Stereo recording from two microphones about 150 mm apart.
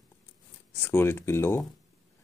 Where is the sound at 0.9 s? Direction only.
15° left (ahead or behind).